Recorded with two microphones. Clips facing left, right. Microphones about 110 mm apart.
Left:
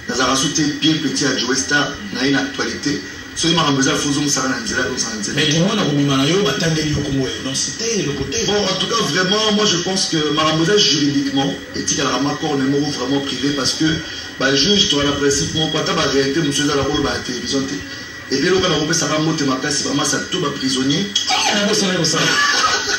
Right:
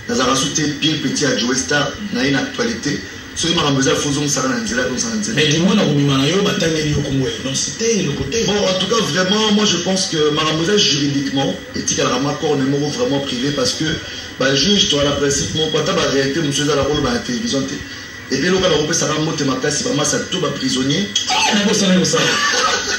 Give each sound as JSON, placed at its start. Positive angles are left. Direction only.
{"t": 0.1, "sound": "a man's voice", "side_deg": 25}
{"t": 3.4, "sound": "a man's voice", "side_deg": 25}
{"t": 7.8, "sound": "a man's voice", "side_deg": 25}
{"t": 14.4, "sound": "a man's voice", "side_deg": 25}
{"t": 18.3, "sound": "a man's voice", "side_deg": 25}
{"t": 20.7, "sound": "a man's voice", "side_deg": 25}